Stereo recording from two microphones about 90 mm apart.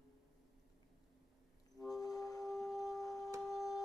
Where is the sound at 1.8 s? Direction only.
40° left (ahead or behind).